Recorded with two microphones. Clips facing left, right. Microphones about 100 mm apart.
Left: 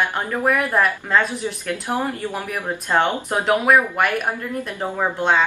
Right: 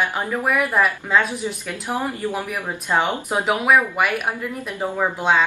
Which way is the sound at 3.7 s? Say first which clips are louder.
Right 1 dB; 5° right (ahead or behind).